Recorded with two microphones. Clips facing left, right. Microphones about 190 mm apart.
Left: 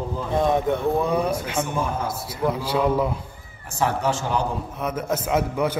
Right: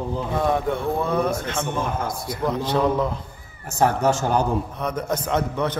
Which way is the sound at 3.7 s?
45° right (ahead or behind).